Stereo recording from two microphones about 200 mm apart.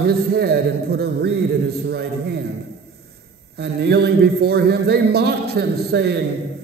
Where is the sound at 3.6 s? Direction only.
55° right (ahead or behind).